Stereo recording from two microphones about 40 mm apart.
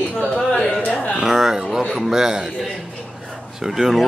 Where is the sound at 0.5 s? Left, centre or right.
Left.